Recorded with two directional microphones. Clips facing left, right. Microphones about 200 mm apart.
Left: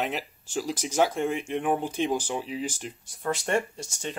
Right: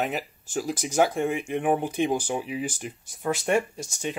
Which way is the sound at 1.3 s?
10° right (ahead or behind).